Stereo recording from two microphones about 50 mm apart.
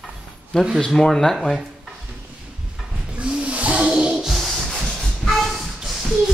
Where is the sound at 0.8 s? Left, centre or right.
Centre.